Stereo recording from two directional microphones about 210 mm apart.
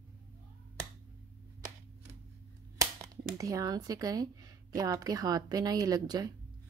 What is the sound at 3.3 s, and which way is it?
A woman's voice, 15° right (ahead or behind).